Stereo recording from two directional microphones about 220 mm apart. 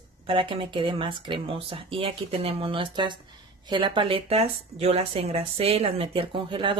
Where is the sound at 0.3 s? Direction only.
25° right (ahead or behind).